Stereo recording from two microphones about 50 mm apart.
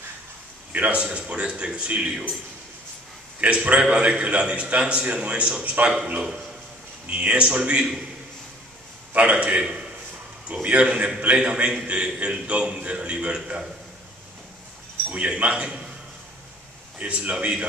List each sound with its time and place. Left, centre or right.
0.7 s a man's voice: right
3.3 s a man's voice: right
5.8 s speech: right
7.1 s a man's voice: right
9.1 s a man's voice: right
15.1 s a man's voice: right
17.0 s a man's voice: right